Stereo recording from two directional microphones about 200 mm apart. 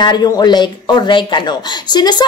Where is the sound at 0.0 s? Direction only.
20° left (ahead or behind).